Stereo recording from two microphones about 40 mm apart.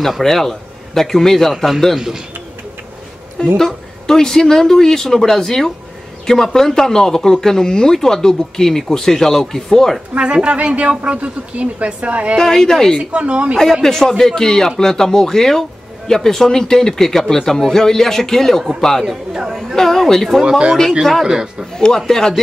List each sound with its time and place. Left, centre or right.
0.2 s a man's voice: centre
2.0 s speech: centre
3.5 s speech: centre
10.1 s a woman's voice: right
12.4 s speech: centre
13.1 s a woman's voice: right
13.8 s speech: centre
20.4 s speech: right
21.0 s speech: centre
21.3 s speech: centre
21.7 s speech: centre